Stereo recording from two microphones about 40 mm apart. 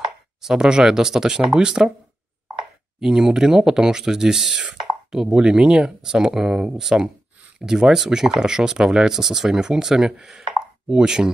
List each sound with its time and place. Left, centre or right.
0.4 s speech: centre
3.0 s speech: centre
9.1 s speech: centre